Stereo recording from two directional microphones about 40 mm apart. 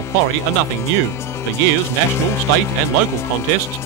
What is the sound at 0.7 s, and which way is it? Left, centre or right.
Speech, left.